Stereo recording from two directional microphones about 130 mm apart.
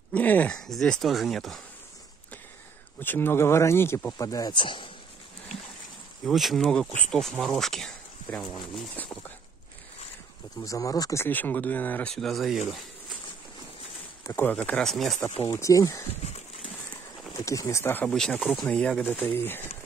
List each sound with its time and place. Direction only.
0.1 s speech: 10° left (ahead or behind)
3.0 s speech: 15° left (ahead or behind); by 4.8 s 40° left (ahead or behind)
6.2 s speech: centre (ahead or behind)
10.6 s speech: 25° left (ahead or behind); by 12.5 s centre (ahead or behind)
14.2 s speech: 15° left (ahead or behind)
15.4 s speech: 25° left (ahead or behind)
17.5 s speech: 25° left (ahead or behind)
18.1 s speech: 5° left (ahead or behind)